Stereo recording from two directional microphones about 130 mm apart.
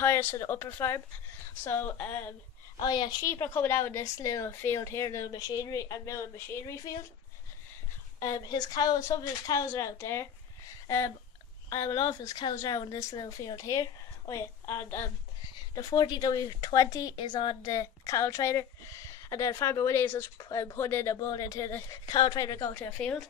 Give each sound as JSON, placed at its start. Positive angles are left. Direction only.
{"t": 0.0, "sound": "speech", "side_deg": 20}
{"t": 2.8, "sound": "speech", "side_deg": 35}
{"t": 8.2, "sound": "speech", "side_deg": 30}
{"t": 11.7, "sound": "speech", "side_deg": 25}
{"t": 22.1, "sound": "speech", "side_deg": 30}
{"t": 22.9, "sound": "speech", "side_deg": 10}